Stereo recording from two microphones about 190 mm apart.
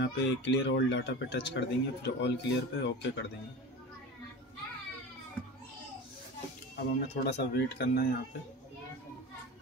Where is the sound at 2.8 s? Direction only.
70° left (ahead or behind).